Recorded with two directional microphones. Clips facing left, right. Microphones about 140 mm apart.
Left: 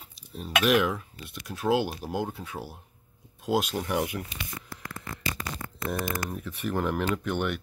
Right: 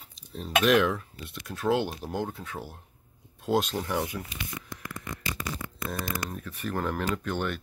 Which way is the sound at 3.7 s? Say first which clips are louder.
Left 1 dB; 15° left (ahead or behind).